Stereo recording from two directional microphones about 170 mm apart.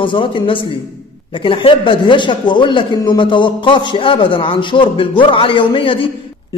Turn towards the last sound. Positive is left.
turn(degrees=30)  # may be behind; listen again after turning